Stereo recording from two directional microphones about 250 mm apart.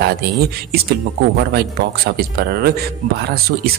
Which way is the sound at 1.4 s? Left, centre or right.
Right.